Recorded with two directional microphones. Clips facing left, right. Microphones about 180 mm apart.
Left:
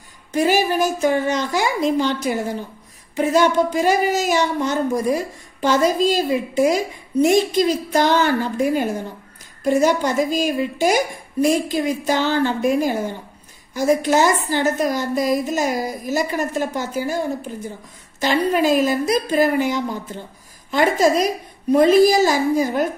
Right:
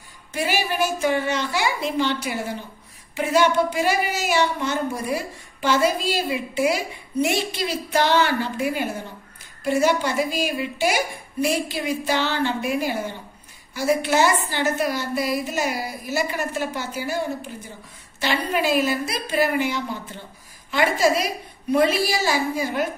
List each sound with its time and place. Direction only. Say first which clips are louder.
0.3 s a child's voice: left 7 dB; 40° left (ahead or behind)
18.2 s a child's voice: left 5 dB; 40° left (ahead or behind)
21.7 s a woman's voice: left 8 dB; 40° left (ahead or behind)